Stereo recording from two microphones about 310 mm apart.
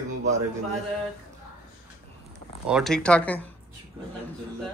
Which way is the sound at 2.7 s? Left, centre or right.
Centre.